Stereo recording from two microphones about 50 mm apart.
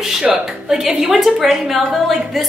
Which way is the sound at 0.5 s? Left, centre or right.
Centre.